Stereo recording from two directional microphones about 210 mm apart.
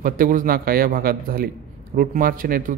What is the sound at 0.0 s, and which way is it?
Speech, 40° right (ahead or behind).